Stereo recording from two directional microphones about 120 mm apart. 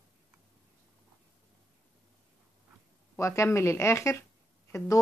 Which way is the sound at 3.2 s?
20° left (ahead or behind).